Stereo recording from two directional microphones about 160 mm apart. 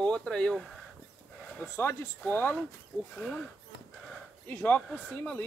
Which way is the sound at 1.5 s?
10° left (ahead or behind).